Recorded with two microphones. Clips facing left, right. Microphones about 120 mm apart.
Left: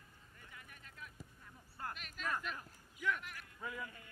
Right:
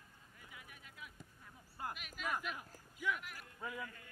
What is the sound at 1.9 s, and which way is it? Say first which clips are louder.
Speech: left 1 dB; 5° right (ahead or behind).